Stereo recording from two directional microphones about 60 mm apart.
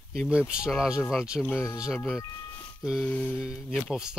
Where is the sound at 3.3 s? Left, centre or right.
Centre.